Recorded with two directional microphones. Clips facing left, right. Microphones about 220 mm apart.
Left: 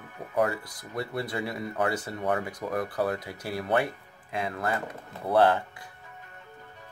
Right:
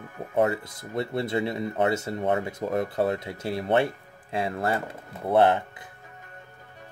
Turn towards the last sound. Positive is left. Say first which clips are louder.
# right 2 dB
turn(degrees=-20)  # may be behind; listen again after turning